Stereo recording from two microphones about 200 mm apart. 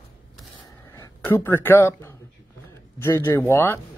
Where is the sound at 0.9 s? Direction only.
10° left (ahead or behind).